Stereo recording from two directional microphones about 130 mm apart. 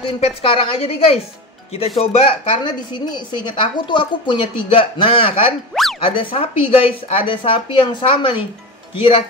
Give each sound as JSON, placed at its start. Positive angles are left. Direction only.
{"t": 0.0, "sound": "a woman's voice", "side_deg": 45}
{"t": 5.7, "sound": "a sound", "side_deg": 5}
{"t": 6.1, "sound": "a woman's voice", "side_deg": 45}